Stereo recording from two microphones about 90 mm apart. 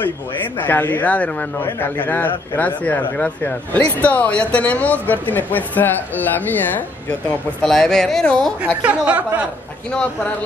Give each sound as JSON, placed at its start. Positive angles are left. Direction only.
{"t": 0.6, "sound": "speech", "side_deg": 20}
{"t": 7.6, "sound": "speech", "side_deg": 5}
{"t": 8.8, "sound": "speech", "side_deg": -15}
{"t": 9.8, "sound": "speech", "side_deg": 10}